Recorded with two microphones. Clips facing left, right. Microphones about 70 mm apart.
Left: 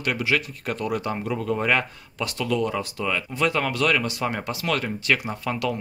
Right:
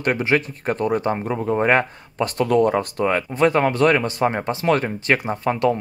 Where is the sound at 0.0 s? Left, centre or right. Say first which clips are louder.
Right 5 dB; right.